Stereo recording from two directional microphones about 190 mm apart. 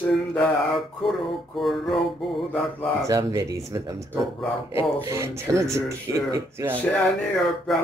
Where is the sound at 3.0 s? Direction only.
15° right (ahead or behind).